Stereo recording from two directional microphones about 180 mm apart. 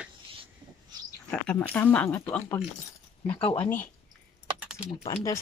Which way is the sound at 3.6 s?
10° left (ahead or behind).